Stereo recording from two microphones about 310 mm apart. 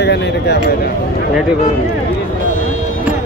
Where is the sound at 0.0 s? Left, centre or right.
Left.